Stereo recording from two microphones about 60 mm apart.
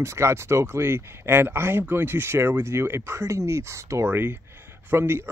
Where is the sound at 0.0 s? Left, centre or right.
Right.